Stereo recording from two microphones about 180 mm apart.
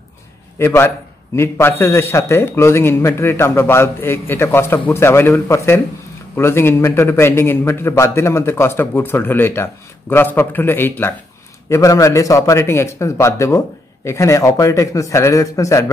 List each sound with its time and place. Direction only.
0.6 s a man's voice: 15° left (ahead or behind)